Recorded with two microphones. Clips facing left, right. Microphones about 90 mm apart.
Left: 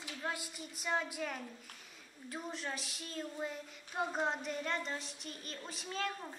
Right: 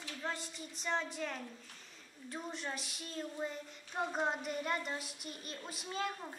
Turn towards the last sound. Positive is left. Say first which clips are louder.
# even
turn(degrees=-5)  # may be behind; listen again after turning